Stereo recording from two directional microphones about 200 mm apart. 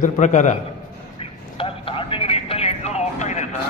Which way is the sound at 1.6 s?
25° left (ahead or behind).